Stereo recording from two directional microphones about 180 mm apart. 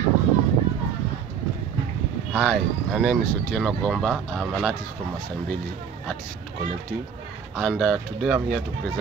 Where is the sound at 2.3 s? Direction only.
5° left (ahead or behind).